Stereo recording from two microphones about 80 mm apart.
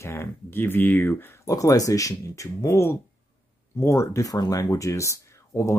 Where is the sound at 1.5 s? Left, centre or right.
Left.